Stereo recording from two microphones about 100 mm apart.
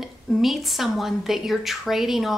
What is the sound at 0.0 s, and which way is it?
A woman's voice, centre (ahead or behind).